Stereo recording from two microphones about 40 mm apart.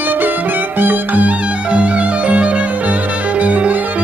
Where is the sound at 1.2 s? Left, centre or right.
Right.